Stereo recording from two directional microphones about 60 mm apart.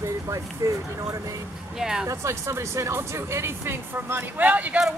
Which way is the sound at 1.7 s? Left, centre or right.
Centre.